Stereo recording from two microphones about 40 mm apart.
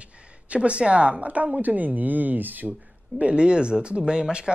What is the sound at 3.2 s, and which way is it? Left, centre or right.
Speech, right.